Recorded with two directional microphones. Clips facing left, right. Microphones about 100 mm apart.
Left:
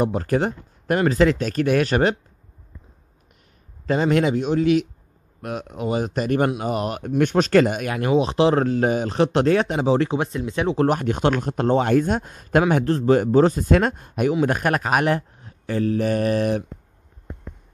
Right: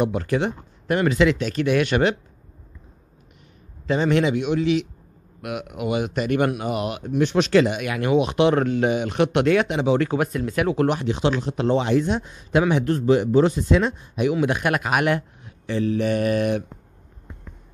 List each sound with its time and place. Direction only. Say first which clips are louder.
0.0 s speech: left 1 dB; 35° left (ahead or behind)
3.8 s speech: left 1 dB; 40° left (ahead or behind)
7.0 s speech: left 1 dB; 50° left (ahead or behind); by 10.0 s 35° left (ahead or behind)
10.0 s speech: right 1 dB; 25° left (ahead or behind)
10.9 s speech: left 2 dB; 50° left (ahead or behind)
12.8 s speech: left 1 dB; 35° left (ahead or behind)
14.4 s speech: left 1 dB; 40° left (ahead or behind)